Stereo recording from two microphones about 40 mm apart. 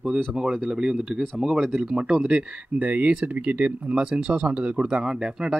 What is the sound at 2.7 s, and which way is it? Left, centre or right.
Speech, right.